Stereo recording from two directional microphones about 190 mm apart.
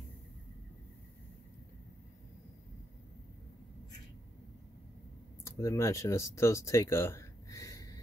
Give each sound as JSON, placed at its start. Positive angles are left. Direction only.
{"t": 5.4, "sound": "speech", "side_deg": 15}